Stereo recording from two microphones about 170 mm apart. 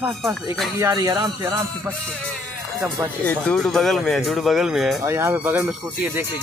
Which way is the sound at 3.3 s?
5° left (ahead or behind).